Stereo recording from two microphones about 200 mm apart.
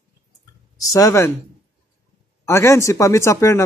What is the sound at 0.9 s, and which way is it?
Speech, 15° left (ahead or behind).